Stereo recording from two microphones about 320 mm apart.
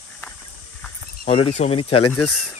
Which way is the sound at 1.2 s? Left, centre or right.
Centre.